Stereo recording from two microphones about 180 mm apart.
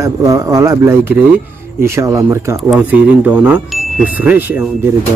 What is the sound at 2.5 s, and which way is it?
A man's voice, 5° right (ahead or behind).